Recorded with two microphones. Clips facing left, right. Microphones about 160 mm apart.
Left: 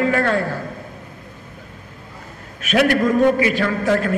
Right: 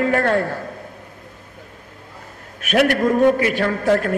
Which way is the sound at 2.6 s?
55° right (ahead or behind).